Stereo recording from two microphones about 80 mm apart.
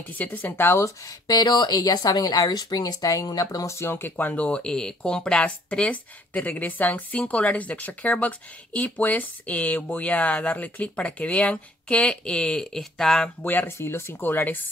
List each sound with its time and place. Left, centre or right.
0.2 s speech: left; by 13.3 s centre
13.4 s speech: left